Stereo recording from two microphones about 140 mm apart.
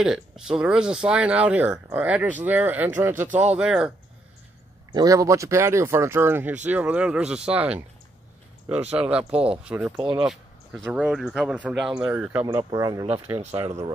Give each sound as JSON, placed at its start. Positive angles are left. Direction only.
{"t": 0.0, "sound": "speech", "side_deg": -5}
{"t": 4.9, "sound": "speech", "side_deg": -25}
{"t": 8.9, "sound": "speech", "side_deg": -10}
{"t": 9.9, "sound": "speech", "side_deg": -30}
{"t": 10.2, "sound": "speech", "side_deg": 0}
{"t": 13.4, "sound": "speech", "side_deg": -45}